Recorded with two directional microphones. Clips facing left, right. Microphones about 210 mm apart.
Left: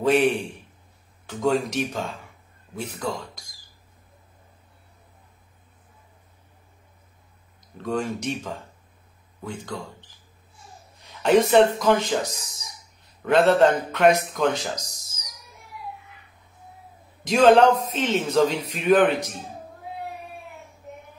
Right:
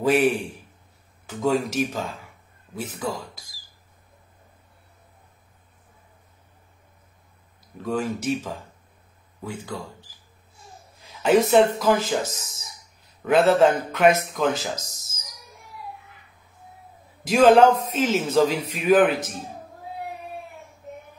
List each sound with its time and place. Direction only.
0.0 s a man's voice: 5° right (ahead or behind)
7.7 s a man's voice: 5° right (ahead or behind)
11.0 s a sound: centre (ahead or behind)
11.8 s a man's voice: 5° right (ahead or behind)
17.2 s a man's voice: 5° right (ahead or behind)